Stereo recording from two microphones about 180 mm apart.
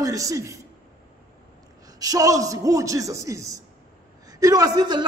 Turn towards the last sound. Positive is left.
turn(degrees=-20)  # may be behind; listen again after turning